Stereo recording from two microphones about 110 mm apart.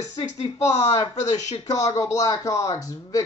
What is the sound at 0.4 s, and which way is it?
Speech, 90° left.